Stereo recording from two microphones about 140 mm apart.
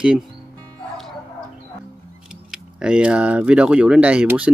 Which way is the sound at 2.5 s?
5° right (ahead or behind).